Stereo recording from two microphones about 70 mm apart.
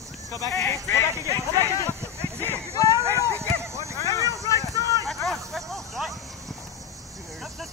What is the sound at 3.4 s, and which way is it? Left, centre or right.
Clip-clop, right.